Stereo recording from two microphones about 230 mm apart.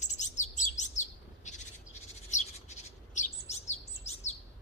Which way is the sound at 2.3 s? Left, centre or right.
Left.